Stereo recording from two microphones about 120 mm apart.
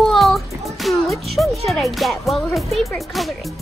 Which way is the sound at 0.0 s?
Centre (ahead or behind).